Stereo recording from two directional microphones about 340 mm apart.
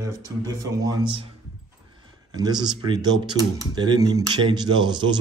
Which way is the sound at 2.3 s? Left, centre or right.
Centre.